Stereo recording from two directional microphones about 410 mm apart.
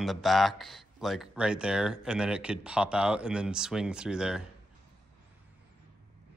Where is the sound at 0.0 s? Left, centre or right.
Centre.